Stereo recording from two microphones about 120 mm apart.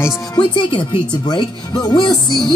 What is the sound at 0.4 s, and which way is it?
Speech, 45° left (ahead or behind).